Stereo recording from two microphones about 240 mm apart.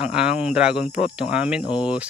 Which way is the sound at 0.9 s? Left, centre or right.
Left.